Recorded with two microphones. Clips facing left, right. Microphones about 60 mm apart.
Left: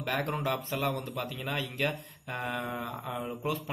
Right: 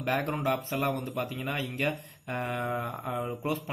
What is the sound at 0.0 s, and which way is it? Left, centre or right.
Speech, right.